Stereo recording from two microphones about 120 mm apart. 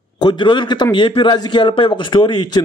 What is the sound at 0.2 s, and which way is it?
A man's voice, 40° left (ahead or behind).